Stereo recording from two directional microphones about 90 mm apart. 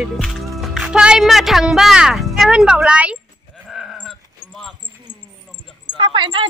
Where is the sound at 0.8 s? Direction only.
10° right (ahead or behind).